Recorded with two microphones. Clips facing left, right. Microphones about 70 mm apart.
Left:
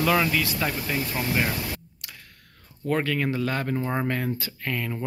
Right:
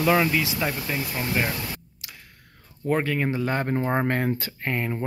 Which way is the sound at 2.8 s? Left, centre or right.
Centre.